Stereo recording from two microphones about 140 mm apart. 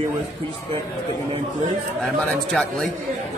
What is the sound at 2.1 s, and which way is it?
Speech, 5° left (ahead or behind).